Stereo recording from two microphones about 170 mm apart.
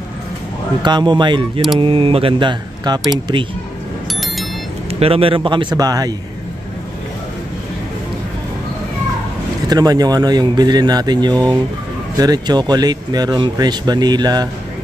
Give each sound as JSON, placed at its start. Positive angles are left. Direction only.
{"t": 0.8, "sound": "speech", "side_deg": -25}
{"t": 5.0, "sound": "speech", "side_deg": -35}
{"t": 9.7, "sound": "speech", "side_deg": -25}